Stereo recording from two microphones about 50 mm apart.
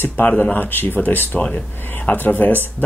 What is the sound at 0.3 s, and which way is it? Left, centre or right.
Speech, left.